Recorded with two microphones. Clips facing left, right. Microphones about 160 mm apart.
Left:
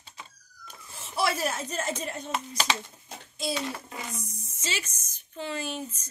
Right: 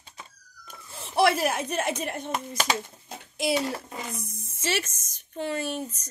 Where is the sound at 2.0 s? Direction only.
60° right (ahead or behind).